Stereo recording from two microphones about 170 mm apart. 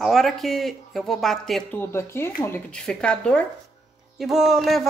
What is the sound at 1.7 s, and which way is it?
A woman's voice, 15° left (ahead or behind).